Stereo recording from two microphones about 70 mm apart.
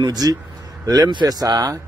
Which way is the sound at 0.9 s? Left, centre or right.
Right.